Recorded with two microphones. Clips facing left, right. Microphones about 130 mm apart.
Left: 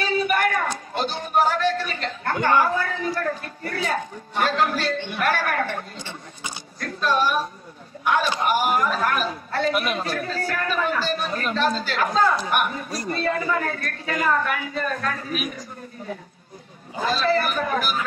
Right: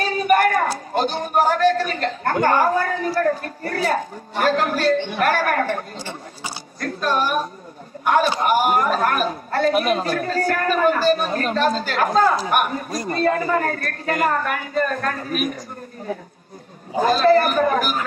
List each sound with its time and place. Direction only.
0.0 s speech: 45° right (ahead or behind)
4.9 s biting: 45° right (ahead or behind)
8.0 s a man's voice: 45° right (ahead or behind)
17.0 s a man's voice: 45° right (ahead or behind)